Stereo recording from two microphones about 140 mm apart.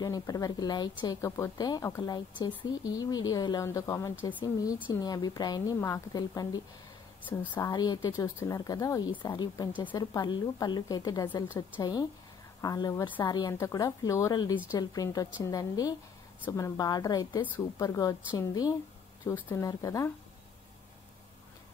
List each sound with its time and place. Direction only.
0.0 s a woman's voice: 25° left (ahead or behind)
7.6 s a woman's voice: 30° left (ahead or behind)